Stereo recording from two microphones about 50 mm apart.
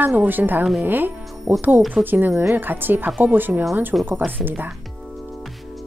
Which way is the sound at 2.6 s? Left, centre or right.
Right.